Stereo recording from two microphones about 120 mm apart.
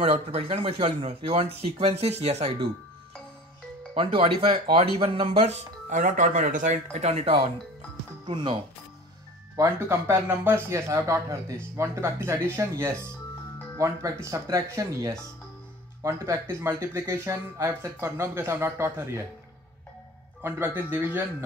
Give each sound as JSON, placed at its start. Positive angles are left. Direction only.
{"t": 0.0, "sound": "speech", "side_deg": -55}
{"t": 3.9, "sound": "speech", "side_deg": -45}
{"t": 8.3, "sound": "speech", "side_deg": -40}
{"t": 9.6, "sound": "speech", "side_deg": -20}
{"t": 20.4, "sound": "speech", "side_deg": -20}